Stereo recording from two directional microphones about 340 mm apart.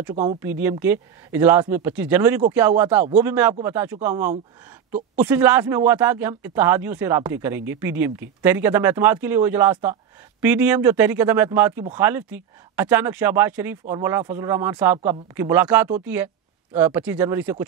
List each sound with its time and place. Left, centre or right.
0.1 s speech: right
0.4 s speech: centre